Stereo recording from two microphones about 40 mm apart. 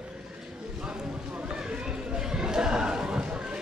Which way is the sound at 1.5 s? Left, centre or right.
Centre.